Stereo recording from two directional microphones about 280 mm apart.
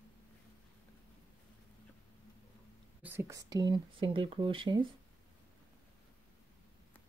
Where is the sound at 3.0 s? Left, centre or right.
Centre.